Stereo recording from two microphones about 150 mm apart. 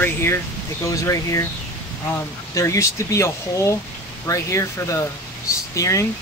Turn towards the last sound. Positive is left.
turn(degrees=20)  # may be behind; listen again after turning